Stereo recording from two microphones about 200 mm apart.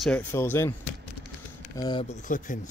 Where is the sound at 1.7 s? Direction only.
20° left (ahead or behind).